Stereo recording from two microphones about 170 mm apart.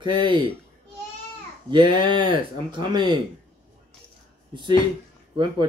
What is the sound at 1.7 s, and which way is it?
Speech, 25° right (ahead or behind).